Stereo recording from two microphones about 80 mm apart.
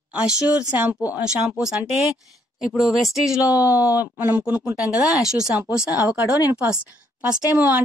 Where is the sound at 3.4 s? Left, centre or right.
Right.